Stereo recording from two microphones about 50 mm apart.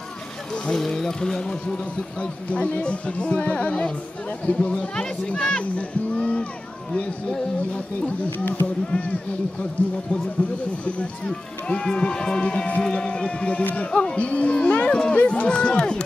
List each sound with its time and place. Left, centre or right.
0.5 s speech: centre
8.3 s speech: left
8.9 s speech: left
11.0 s speech: left